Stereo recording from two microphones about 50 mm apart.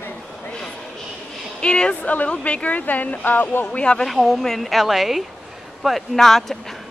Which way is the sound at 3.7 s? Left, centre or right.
Left.